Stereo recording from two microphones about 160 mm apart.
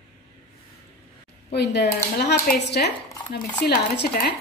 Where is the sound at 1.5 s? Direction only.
90° left.